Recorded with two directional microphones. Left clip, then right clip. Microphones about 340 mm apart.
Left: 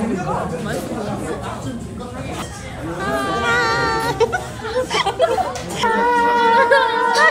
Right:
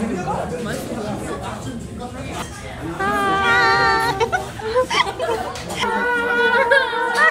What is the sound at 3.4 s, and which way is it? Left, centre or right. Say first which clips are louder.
Music: right 2 dB; centre.